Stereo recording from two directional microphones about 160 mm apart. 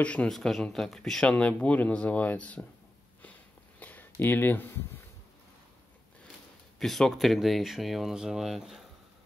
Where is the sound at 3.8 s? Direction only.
10° left (ahead or behind).